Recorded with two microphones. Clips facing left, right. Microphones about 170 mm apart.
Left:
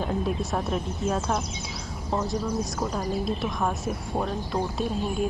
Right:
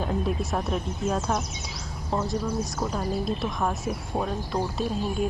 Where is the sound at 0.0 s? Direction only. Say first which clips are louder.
Even; centre (ahead or behind).